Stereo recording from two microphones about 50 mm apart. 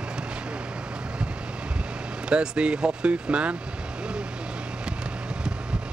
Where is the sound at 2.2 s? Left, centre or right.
Centre.